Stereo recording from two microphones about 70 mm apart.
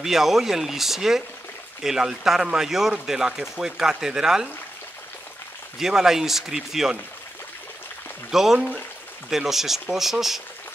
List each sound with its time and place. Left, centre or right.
0.0 s speech: centre
5.8 s speech: centre
8.3 s speech: centre
8.5 s speech: centre
9.3 s speech: centre